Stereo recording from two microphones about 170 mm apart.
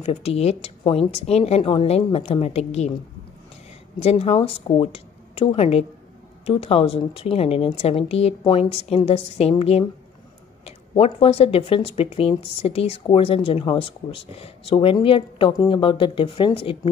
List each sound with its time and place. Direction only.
0.0 s speech: 35° left (ahead or behind)
4.0 s speech: 35° left (ahead or behind)